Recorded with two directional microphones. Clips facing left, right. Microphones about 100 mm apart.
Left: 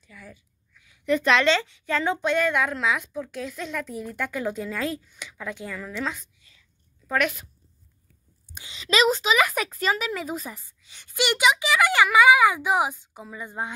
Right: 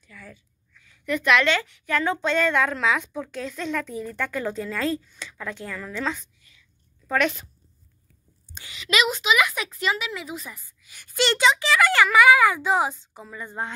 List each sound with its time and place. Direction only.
0.0 s a sound: 15° left (ahead or behind)
1.0 s a woman's voice: 30° left (ahead or behind)
2.2 s speech: 10° left (ahead or behind)
8.7 s speech: 35° left (ahead or behind); by 13.7 s 10° left (ahead or behind)